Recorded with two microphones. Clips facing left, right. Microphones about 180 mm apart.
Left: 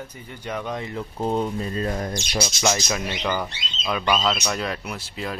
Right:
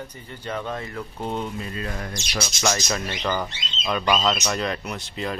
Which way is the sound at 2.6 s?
10° left (ahead or behind).